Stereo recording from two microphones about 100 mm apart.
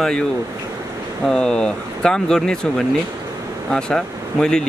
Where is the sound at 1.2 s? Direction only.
10° left (ahead or behind).